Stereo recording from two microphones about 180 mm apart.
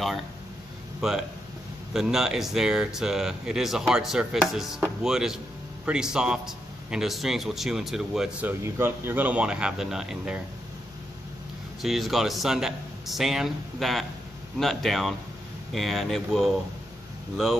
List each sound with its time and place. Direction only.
1.0 s a man's voice: centre (ahead or behind)
11.8 s a man's voice: centre (ahead or behind)